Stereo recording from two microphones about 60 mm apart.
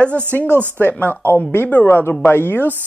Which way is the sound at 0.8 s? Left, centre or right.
Left.